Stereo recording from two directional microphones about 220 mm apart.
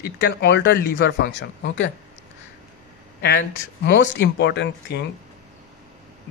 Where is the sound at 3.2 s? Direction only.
50° left (ahead or behind).